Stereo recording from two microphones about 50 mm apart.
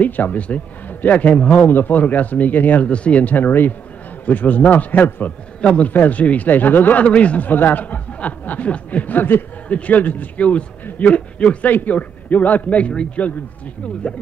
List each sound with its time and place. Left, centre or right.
0.0 s speech: left
2.9 s speech: left
5.6 s a man's voice: left
9.7 s a man's voice: left